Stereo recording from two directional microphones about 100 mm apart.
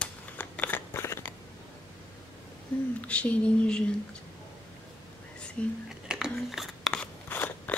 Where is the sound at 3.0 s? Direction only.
15° left (ahead or behind).